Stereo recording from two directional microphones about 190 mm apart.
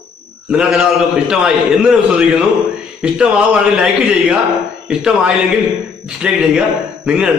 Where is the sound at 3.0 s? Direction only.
5° right (ahead or behind).